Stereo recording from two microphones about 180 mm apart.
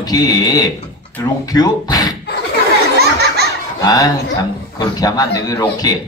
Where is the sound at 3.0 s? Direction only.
65° right (ahead or behind).